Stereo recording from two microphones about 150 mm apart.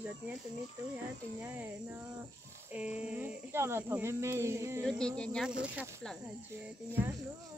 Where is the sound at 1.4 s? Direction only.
10° right (ahead or behind).